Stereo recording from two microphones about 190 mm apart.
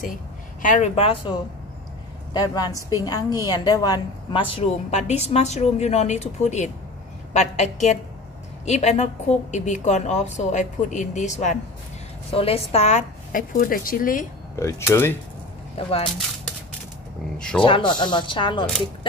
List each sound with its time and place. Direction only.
0.6 s a woman's voice: 40° left (ahead or behind)
2.3 s a woman's voice: 20° left (ahead or behind); by 14.2 s 45° left (ahead or behind)
14.5 s speech: 15° left (ahead or behind)
15.8 s a woman's voice: 30° left (ahead or behind)
17.6 s a woman's voice: 25° left (ahead or behind)